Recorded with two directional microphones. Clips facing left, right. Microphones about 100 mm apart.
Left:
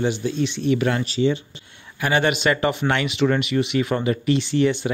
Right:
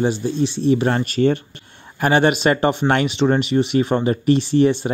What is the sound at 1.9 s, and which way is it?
Speech, 40° right (ahead or behind).